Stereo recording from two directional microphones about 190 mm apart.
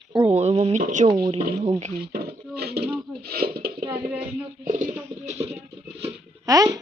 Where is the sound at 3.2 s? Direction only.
55° right (ahead or behind).